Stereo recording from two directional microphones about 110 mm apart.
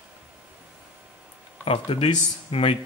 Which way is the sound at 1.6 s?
65° left (ahead or behind).